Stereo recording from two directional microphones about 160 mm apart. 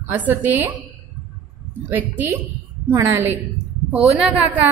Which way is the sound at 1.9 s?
15° right (ahead or behind).